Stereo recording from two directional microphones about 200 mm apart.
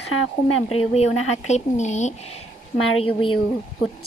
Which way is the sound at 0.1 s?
90° left.